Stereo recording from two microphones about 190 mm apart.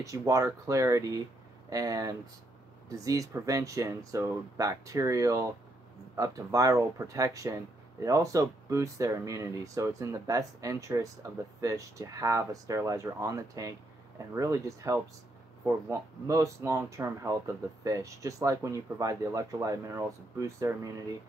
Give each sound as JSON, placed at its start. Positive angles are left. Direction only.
{"t": 0.0, "sound": "speech", "side_deg": -15}